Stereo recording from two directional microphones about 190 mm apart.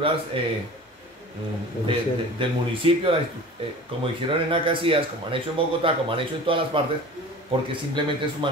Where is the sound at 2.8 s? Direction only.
30° right (ahead or behind).